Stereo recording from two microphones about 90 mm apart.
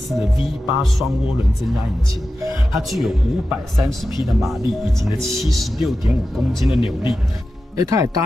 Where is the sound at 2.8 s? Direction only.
Centre (ahead or behind).